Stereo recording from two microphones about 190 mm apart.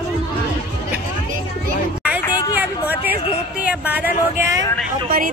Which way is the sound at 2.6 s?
10° right (ahead or behind).